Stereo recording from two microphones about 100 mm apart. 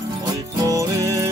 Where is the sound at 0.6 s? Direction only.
35° right (ahead or behind).